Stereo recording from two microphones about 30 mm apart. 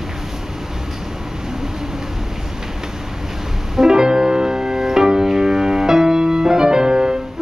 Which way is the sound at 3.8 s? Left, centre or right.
Right.